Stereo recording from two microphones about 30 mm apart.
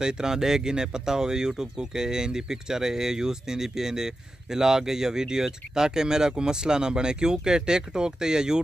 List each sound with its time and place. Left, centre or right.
0.0 s speech: right